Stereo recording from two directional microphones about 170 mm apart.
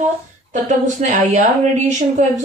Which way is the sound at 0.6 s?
45° right (ahead or behind).